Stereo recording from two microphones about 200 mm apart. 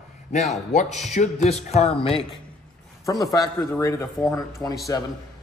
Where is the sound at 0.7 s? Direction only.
35° left (ahead or behind).